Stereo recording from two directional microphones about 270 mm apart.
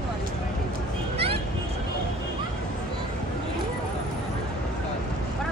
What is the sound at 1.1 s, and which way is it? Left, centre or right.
Music, right.